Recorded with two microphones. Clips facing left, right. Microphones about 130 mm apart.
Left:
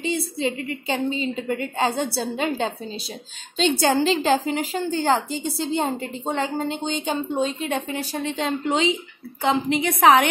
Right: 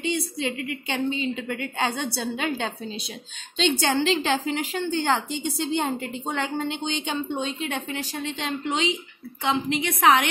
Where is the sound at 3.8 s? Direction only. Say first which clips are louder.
Left 6 dB; 40° left (ahead or behind).